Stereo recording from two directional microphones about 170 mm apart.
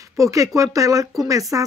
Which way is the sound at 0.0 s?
20° right (ahead or behind).